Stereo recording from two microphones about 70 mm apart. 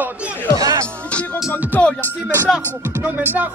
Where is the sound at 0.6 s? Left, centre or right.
Right.